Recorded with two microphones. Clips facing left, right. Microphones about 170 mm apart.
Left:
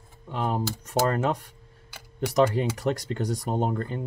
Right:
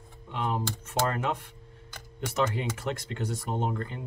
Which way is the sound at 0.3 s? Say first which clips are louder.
Left 3 dB; 40° left (ahead or behind).